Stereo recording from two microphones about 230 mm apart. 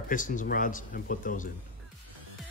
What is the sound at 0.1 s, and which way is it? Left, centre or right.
Speech, left.